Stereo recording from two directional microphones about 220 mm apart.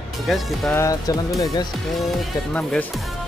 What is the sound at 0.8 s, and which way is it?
Speech, 15° left (ahead or behind).